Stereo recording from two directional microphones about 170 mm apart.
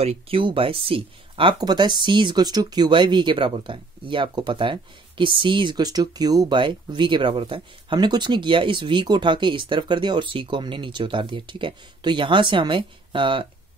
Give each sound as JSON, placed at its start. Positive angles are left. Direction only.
{"t": 0.0, "sound": "speech", "side_deg": -35}